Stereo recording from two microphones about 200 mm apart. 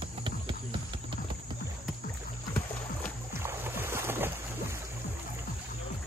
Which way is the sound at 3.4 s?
10° right (ahead or behind).